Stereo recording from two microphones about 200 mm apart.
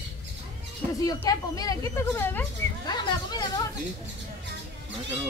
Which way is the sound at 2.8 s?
20° left (ahead or behind).